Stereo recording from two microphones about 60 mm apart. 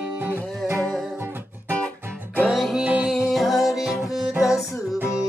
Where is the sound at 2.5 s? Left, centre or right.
Centre.